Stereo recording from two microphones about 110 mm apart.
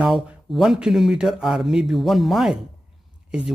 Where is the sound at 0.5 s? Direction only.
5° right (ahead or behind).